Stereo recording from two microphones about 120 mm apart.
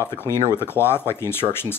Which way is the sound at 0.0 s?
20° left (ahead or behind).